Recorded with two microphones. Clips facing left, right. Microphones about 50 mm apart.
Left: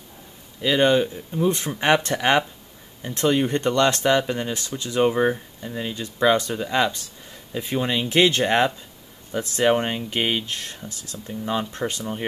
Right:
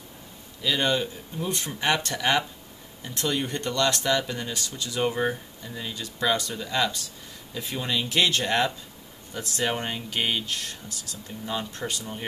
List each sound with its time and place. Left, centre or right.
0.6 s speech: left